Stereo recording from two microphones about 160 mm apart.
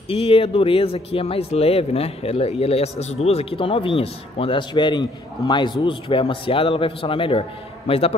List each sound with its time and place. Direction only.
0.1 s speech: 35° left (ahead or behind)